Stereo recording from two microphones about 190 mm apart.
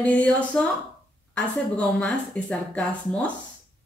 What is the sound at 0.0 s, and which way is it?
Speech, 5° left (ahead or behind).